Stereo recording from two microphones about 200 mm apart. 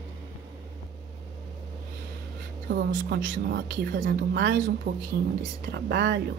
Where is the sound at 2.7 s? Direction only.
55° right (ahead or behind).